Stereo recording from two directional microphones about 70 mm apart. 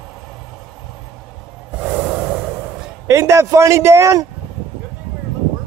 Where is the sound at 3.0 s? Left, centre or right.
Right.